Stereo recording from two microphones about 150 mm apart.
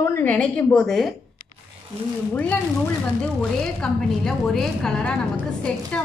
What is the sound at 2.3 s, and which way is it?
A man's voice, 10° left (ahead or behind).